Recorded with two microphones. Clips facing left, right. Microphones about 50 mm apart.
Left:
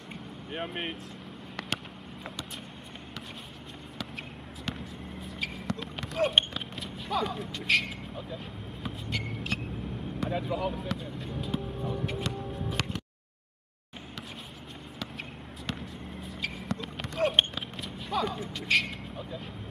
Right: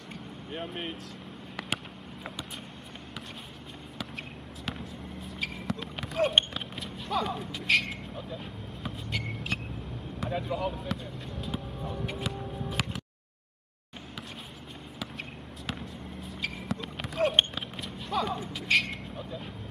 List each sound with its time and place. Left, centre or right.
0.1 s vehicle: centre
4.6 s basketball bounce: centre
8.8 s a sound: centre
10.2 s speech: centre
11.4 s music: centre
15.6 s basketball bounce: centre